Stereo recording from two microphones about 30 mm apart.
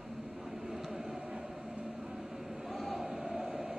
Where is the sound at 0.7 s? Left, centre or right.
Centre.